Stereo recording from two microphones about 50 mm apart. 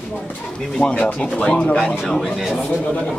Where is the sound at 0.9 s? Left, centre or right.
Left.